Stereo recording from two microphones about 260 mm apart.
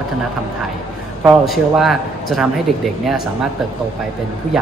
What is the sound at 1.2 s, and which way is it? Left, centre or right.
A man's voice, centre.